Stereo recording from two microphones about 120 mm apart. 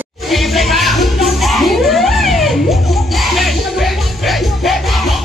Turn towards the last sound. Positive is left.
turn(degrees=0)  # may be behind; listen again after turning